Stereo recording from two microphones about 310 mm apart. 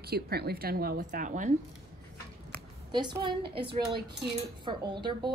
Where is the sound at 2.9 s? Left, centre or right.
Centre.